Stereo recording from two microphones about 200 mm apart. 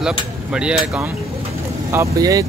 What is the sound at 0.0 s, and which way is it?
Speech, 5° right (ahead or behind).